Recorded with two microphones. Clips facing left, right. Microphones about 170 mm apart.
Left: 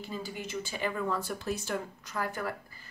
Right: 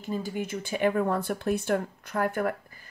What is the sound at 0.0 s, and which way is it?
Speech, 50° right (ahead or behind).